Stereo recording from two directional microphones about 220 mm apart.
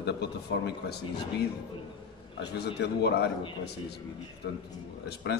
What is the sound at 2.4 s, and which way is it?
Speech, 50° left (ahead or behind).